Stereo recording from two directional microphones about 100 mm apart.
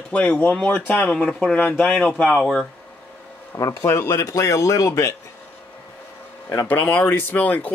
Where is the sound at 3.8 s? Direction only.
25° left (ahead or behind).